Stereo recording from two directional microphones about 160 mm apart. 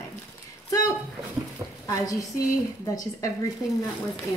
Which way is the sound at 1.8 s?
20° left (ahead or behind).